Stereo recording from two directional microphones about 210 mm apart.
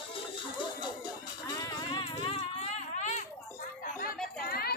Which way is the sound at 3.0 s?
35° left (ahead or behind).